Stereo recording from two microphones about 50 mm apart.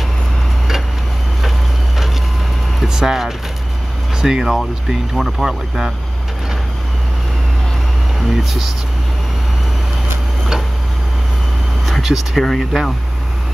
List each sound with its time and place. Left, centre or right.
2.8 s speech: centre
8.3 s speech: centre
11.8 s vehicle: centre
12.4 s speech: centre